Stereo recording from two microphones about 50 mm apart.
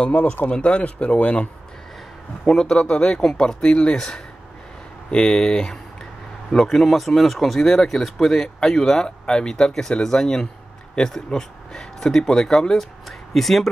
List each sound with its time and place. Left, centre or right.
0.1 s speech: left
0.5 s speech: left
2.4 s speech: centre